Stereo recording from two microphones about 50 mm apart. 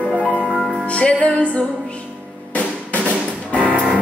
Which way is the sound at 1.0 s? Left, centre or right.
Left.